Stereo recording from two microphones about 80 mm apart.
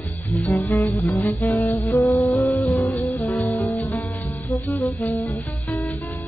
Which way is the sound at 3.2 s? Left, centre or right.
Left.